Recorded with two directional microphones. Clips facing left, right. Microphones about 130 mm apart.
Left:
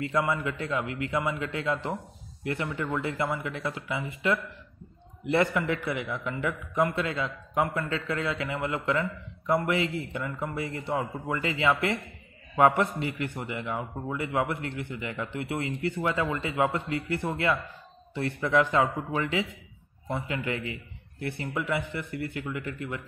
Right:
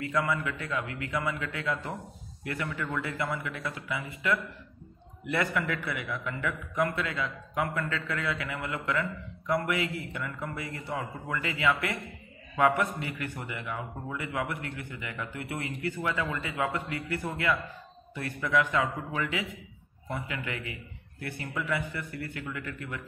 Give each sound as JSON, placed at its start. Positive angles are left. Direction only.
{"t": 0.1, "sound": "a man's voice", "side_deg": 25}